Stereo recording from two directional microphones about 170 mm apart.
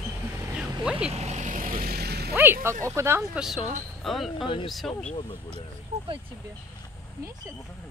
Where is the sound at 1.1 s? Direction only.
40° right (ahead or behind); by 2.3 s 70° right (ahead or behind).